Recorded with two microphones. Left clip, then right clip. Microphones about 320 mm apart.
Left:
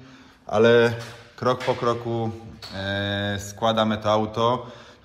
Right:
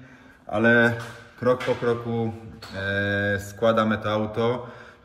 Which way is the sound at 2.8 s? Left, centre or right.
Centre.